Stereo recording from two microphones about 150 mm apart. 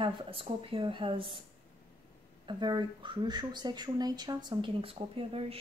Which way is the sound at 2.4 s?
30° right (ahead or behind).